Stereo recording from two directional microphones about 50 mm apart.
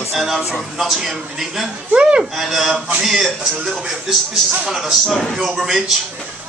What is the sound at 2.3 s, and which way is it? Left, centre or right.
Speech, centre.